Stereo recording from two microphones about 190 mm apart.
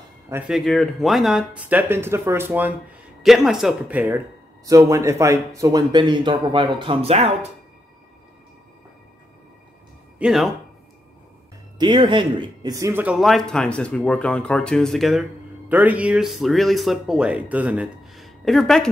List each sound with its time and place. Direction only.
0.3 s speech: centre (ahead or behind); by 7.3 s 30° right (ahead or behind)
10.1 s speech: 5° right (ahead or behind)
11.8 s speech: 25° right (ahead or behind); by 18.9 s centre (ahead or behind)